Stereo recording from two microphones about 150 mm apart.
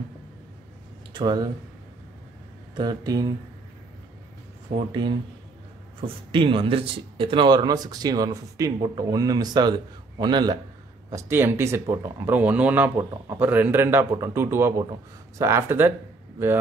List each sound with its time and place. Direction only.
1.1 s speech: 30° right (ahead or behind)
2.7 s speech: 30° right (ahead or behind)
5.9 s speech: 35° right (ahead or behind); by 15.9 s 15° right (ahead or behind)